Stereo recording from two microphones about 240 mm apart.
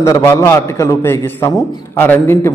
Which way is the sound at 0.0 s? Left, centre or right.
Centre.